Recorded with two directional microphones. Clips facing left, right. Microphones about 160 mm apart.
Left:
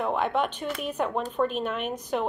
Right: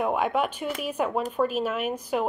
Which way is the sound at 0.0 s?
10° right (ahead or behind).